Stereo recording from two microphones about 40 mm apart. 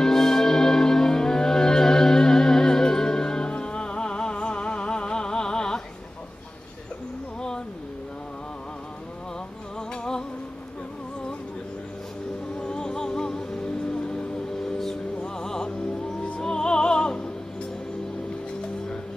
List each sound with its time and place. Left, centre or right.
0.0 s music: centre
9.8 s music: centre
12.5 s music: centre